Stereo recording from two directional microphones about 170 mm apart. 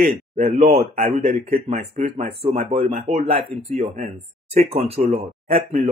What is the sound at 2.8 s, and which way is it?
Speech, 55° right (ahead or behind).